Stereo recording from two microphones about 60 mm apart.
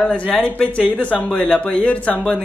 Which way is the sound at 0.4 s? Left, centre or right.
Centre.